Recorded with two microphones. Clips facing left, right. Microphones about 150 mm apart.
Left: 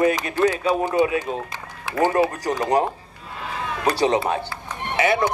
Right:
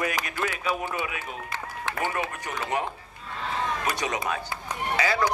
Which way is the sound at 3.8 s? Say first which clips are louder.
Left 9 dB; 30° left (ahead or behind).